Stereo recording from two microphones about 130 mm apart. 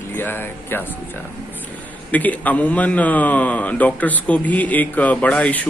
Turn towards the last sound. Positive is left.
turn(degrees=10)  # may be behind; listen again after turning